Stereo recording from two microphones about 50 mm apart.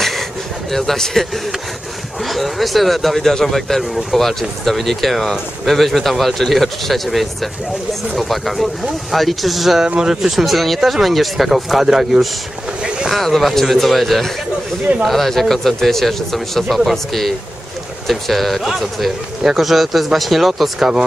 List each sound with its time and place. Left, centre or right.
0.7 s a man's voice: centre
2.2 s speech: centre
9.8 s speech: centre
10.4 s speech: centre
13.1 s speech: centre